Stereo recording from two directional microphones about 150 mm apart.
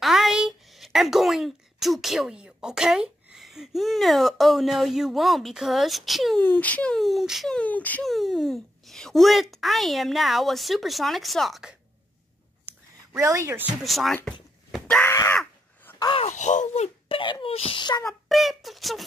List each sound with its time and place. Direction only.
0.0 s speech: centre (ahead or behind)
6.4 s speech: 10° left (ahead or behind)
8.1 s speech: centre (ahead or behind)
13.2 s speech: 20° right (ahead or behind)
13.8 s speech: centre (ahead or behind)
14.7 s groan: 10° left (ahead or behind)
15.3 s a sound: 10° left (ahead or behind)
16.0 s a sound: 35° left (ahead or behind)
16.3 s speech: 55° left (ahead or behind); by 18.0 s 30° left (ahead or behind)
18.3 s speech: centre (ahead or behind)